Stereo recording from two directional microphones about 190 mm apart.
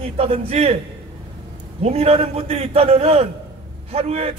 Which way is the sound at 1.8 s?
35° right (ahead or behind).